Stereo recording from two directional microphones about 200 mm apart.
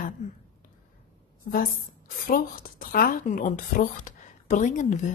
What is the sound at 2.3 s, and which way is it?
Speech, 45° left (ahead or behind).